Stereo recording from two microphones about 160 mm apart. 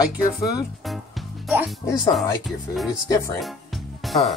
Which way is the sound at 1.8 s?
25° left (ahead or behind).